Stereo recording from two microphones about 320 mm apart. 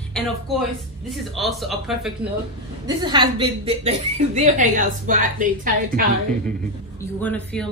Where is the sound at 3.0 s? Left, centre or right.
Centre.